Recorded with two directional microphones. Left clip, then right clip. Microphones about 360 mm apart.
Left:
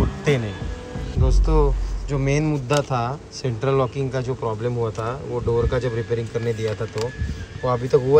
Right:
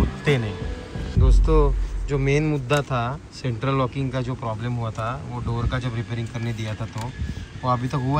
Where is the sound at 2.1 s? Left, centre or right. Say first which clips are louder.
Even; centre.